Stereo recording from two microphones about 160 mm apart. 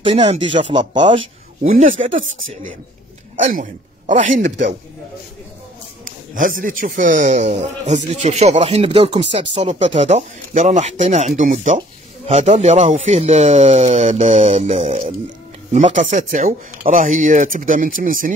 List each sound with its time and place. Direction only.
0.0 s speech: 35° right (ahead or behind)
1.7 s speech: 55° right (ahead or behind)
3.3 s speech: 50° right (ahead or behind)
6.0 s a man's voice: 55° right (ahead or behind); by 15.0 s 40° right (ahead or behind)
15.7 s speech: 50° right (ahead or behind)